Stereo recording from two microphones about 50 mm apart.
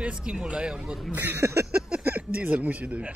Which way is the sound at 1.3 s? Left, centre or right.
Right.